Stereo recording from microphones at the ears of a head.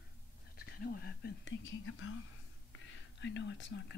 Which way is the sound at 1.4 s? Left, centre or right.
Left.